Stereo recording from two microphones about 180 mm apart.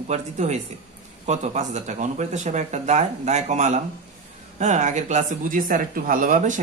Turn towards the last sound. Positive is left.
turn(degrees=-45)  # may be behind; listen again after turning